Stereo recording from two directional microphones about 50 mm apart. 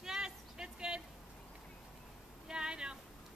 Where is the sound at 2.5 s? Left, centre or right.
Centre.